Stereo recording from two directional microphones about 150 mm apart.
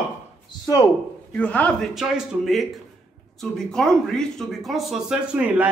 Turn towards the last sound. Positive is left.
turn(degrees=-10)  # may be behind; listen again after turning